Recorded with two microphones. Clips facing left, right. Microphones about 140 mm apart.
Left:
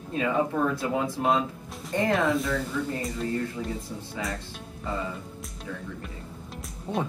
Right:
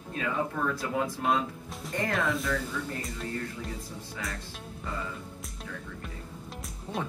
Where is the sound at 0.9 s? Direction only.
25° left (ahead or behind).